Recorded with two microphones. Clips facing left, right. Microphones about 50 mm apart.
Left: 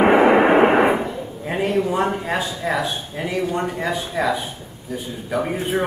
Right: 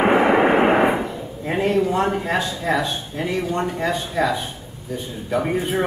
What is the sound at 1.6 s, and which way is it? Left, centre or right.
Speech, centre.